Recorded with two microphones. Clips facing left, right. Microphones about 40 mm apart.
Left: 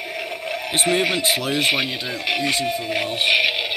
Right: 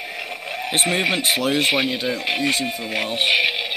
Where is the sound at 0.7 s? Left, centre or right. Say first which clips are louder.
Left 1 dB; right.